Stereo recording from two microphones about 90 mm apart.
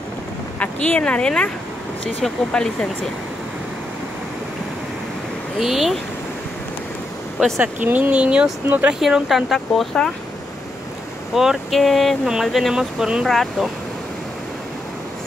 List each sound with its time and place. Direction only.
0.6 s speech: 15° left (ahead or behind)
5.6 s speech: centre (ahead or behind)
7.3 s speech: 5° right (ahead or behind)
7.6 s speech: 20° right (ahead or behind)
9.0 s speech: centre (ahead or behind)
11.3 s speech: centre (ahead or behind)
13.3 s speech: 5° left (ahead or behind)